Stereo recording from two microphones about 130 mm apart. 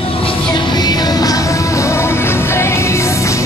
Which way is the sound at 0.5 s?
35° left (ahead or behind).